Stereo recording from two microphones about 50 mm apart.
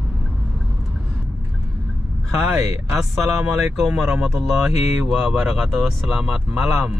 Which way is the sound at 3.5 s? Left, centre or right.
Centre.